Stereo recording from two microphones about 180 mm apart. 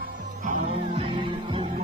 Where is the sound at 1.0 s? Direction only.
25° right (ahead or behind).